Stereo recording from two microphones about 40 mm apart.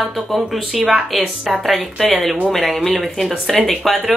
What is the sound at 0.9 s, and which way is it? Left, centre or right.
Speech, centre.